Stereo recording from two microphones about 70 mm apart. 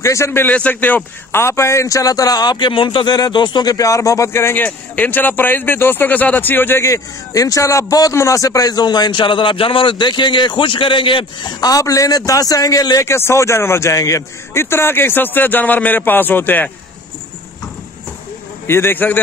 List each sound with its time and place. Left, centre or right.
0.0 s a man's voice: left
0.4 s a man's voice: left
3.7 s a man's voice: left
4.3 s a man's voice: left
4.6 s speech: left
6.8 s a man's voice: left
9.9 s speech: left
11.4 s a man's voice: left
11.8 s a man's voice: left
13.0 s a man's voice: left
18.7 s speech: left